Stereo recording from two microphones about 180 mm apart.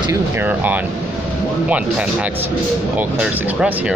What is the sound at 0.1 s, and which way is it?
Speech, 10° right (ahead or behind).